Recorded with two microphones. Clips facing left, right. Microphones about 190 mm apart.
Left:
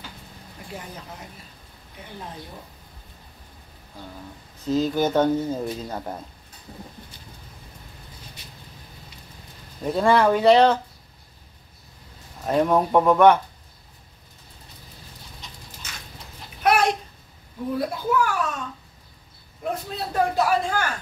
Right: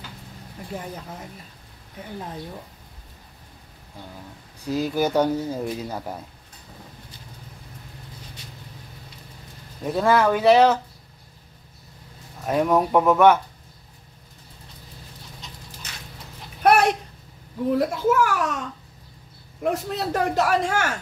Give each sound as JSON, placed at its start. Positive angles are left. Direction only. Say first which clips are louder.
{"t": 4.6, "sound": "speech", "louder": "left 1 dB", "side_deg": -10}
{"t": 9.8, "sound": "speech", "louder": "left 1 dB", "side_deg": -5}
{"t": 12.4, "sound": "speech", "louder": "even", "side_deg": -5}
{"t": 16.6, "sound": "a sound", "louder": "right 3 dB", "side_deg": -60}
{"t": 17.7, "sound": "a child's voice", "louder": "right 3 dB", "side_deg": -85}
{"t": 19.6, "sound": "a man's voice", "louder": "right 4 dB", "side_deg": -80}